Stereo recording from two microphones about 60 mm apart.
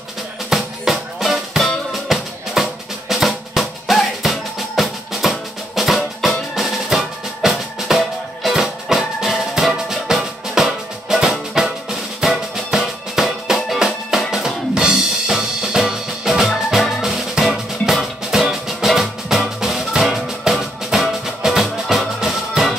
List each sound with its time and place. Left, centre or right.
0.5 s music: centre
1.9 s drum: centre
6.2 s music: centre